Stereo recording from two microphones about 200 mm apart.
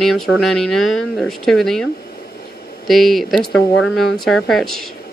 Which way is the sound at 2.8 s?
Centre (ahead or behind).